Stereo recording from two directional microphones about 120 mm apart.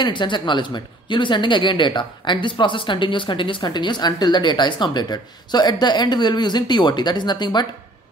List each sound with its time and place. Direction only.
0.0 s a woman's voice: 40° left (ahead or behind)